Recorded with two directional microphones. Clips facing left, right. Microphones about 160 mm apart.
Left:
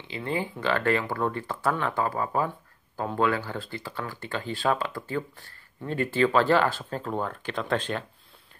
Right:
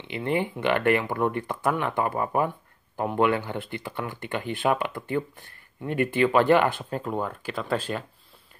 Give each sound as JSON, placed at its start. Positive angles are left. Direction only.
{"t": 0.1, "sound": "speech", "side_deg": -20}